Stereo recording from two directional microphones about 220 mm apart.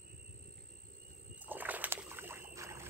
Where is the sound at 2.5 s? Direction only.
15° right (ahead or behind).